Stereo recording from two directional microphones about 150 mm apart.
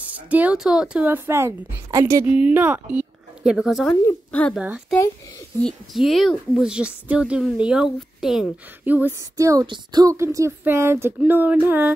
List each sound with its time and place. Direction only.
0.0 s a woman's voice: 10° right (ahead or behind)
2.2 s a woman's voice: 10° right (ahead or behind)
3.8 s speech: 10° left (ahead or behind)
4.6 s a woman's voice: 5° right (ahead or behind)